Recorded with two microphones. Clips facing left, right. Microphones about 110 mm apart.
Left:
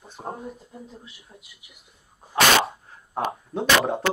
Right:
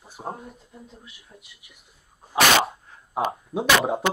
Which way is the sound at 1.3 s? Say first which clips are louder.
Right 2 dB; 20° left (ahead or behind).